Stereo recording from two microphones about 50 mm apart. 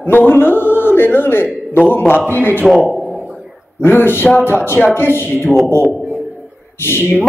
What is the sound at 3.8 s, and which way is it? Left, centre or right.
Speech, left.